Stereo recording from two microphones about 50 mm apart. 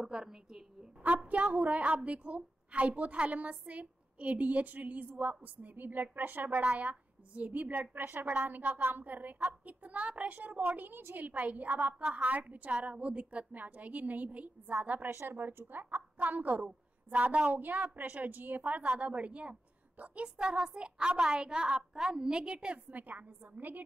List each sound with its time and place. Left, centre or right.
0.0 s a woman's voice: centre
1.0 s a woman's voice: right
10.8 s a woman's voice: right
15.0 s a woman's voice: right
16.6 s a woman's voice: right
22.8 s a woman's voice: right